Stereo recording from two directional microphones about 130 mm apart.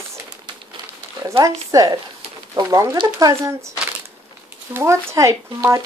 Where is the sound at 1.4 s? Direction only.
25° right (ahead or behind).